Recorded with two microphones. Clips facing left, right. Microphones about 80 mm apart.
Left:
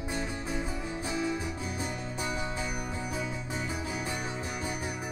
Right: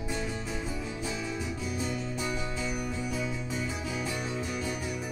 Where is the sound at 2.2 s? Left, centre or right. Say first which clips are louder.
Even; left.